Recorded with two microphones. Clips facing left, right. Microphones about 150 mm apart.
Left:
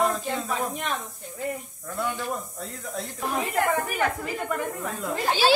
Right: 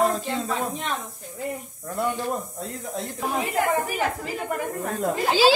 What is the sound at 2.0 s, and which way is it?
Speech, 20° right (ahead or behind).